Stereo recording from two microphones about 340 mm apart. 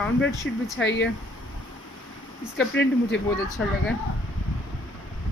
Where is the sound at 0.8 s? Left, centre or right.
Left.